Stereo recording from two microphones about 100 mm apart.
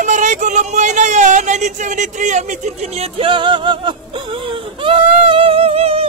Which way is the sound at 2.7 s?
90° right.